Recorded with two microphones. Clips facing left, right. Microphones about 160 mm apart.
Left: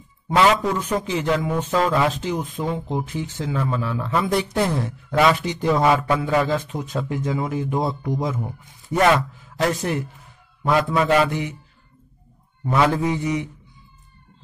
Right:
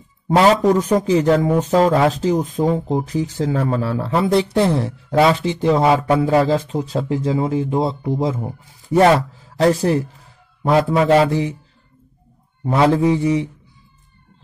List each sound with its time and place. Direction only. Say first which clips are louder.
0.3 s a man's voice: right 5 dB; 40° right (ahead or behind)
12.6 s a man's voice: right 5 dB; 30° right (ahead or behind)